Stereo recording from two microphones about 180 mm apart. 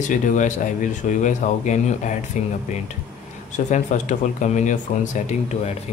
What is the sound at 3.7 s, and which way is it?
Speech, 40° left (ahead or behind).